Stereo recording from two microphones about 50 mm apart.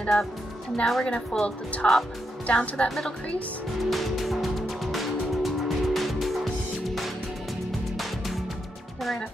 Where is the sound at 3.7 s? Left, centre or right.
Centre.